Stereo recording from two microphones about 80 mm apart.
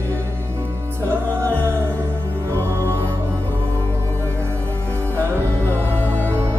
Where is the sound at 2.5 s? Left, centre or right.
Right.